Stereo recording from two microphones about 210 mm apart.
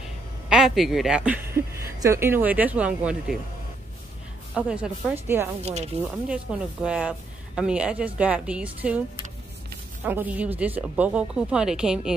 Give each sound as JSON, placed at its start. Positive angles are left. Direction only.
{"t": 0.5, "sound": "a woman's voice", "side_deg": 0}
{"t": 4.6, "sound": "speech", "side_deg": -5}
{"t": 5.6, "sound": "speech", "side_deg": -30}
{"t": 6.0, "sound": "speech", "side_deg": -5}
{"t": 10.0, "sound": "speech", "side_deg": -10}